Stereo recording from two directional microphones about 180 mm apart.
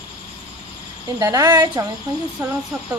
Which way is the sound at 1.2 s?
20° right (ahead or behind).